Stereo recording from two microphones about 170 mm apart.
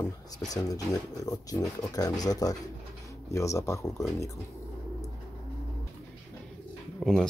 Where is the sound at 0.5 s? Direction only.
20° left (ahead or behind).